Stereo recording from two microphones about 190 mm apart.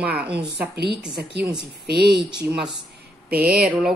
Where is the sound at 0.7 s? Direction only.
60° right (ahead or behind).